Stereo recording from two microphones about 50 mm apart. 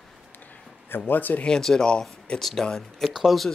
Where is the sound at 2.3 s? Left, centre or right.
Centre.